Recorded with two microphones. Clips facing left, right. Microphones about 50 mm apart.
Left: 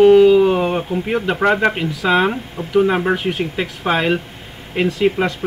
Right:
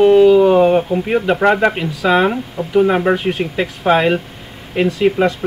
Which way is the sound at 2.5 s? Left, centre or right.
Right.